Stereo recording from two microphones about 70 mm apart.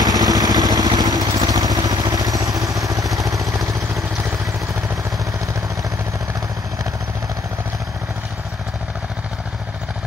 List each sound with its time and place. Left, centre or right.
0.0 s vehicle: right